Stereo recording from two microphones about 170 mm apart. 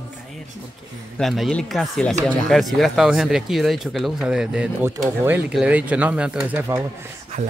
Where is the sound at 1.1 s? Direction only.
Centre (ahead or behind).